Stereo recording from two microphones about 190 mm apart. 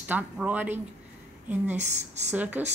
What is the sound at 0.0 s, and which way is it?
Speech, 10° right (ahead or behind).